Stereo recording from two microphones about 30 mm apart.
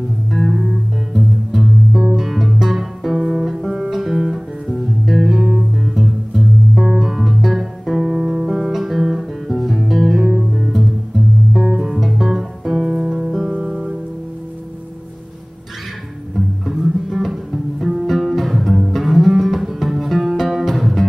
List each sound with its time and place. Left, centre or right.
0.3 s music: centre
2.0 s music: centre
3.2 s music: centre
7.0 s guitar: centre
8.2 s music: right
8.5 s music: centre
10.2 s music: centre
10.5 s music: centre
11.6 s guitar: centre
11.9 s music: centre
13.0 s music: centre
16.3 s music: centre